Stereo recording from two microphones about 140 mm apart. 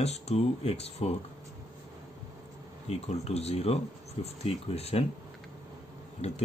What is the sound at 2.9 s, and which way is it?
Speech, 50° left (ahead or behind).